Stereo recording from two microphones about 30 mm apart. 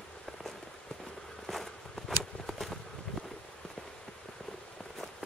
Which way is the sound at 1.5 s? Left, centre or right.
Centre.